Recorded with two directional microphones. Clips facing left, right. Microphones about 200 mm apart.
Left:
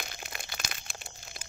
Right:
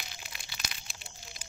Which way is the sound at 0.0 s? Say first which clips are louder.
Left 6 dB; 50° left (ahead or behind).